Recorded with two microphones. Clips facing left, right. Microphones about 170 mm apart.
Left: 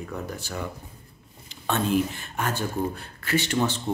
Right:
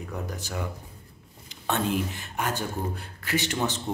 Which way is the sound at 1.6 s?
15° right (ahead or behind).